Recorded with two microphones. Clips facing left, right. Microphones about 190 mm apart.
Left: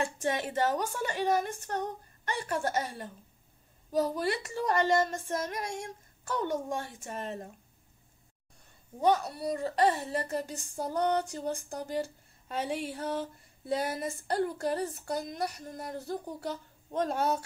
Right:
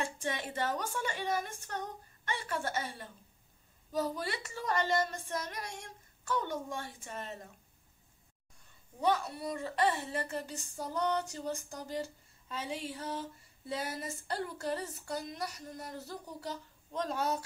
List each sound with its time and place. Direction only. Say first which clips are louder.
0.2 s a woman's voice: left 6 dB; 45° left (ahead or behind)
9.0 s a woman's voice: left 4 dB; 40° left (ahead or behind)